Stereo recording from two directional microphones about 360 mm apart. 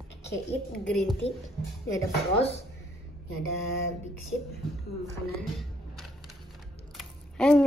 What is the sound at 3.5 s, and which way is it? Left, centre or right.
Speech, centre.